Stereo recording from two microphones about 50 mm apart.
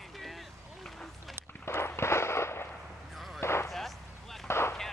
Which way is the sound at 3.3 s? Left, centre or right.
Left.